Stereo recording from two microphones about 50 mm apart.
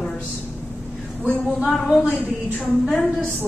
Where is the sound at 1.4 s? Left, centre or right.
Centre.